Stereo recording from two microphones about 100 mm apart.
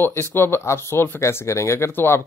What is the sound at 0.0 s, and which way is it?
Speech, 25° left (ahead or behind).